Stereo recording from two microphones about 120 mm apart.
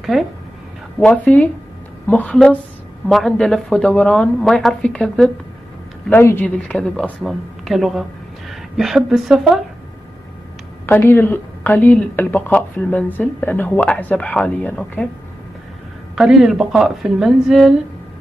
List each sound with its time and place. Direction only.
0.1 s speech: centre (ahead or behind)
0.9 s a woman's voice: 10° left (ahead or behind)
6.2 s a woman's voice: 15° left (ahead or behind); by 9.6 s 5° right (ahead or behind)
10.9 s speech: 20° left (ahead or behind)
16.2 s speech: 5° right (ahead or behind)